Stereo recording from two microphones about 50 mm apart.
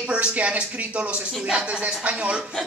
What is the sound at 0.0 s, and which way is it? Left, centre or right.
A man's voice, right.